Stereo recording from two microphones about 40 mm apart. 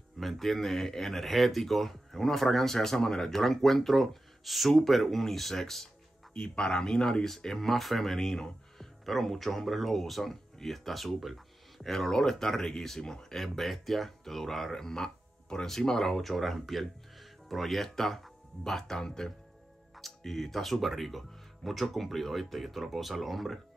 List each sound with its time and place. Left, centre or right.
0.2 s speech: centre
6.3 s speech: left; by 23.6 s centre